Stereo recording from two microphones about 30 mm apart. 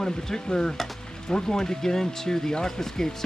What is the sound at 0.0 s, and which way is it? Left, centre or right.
Speech, left.